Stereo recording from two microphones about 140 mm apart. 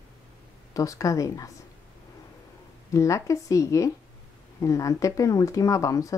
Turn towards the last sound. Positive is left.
turn(degrees=25)  # may be behind; listen again after turning